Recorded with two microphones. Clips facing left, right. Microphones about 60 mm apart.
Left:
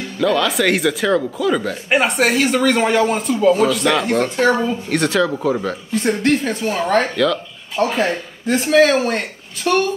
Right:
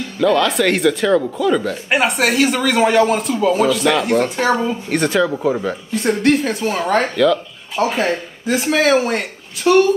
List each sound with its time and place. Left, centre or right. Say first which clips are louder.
0.2 s speech: right 2 dB; centre
4.5 s speech: left 2 dB; centre
4.8 s speech: right 2 dB; centre